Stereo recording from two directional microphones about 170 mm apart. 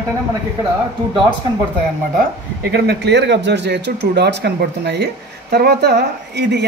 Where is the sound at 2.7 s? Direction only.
75° right (ahead or behind).